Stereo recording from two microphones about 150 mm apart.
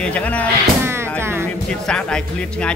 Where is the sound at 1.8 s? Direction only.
5° left (ahead or behind).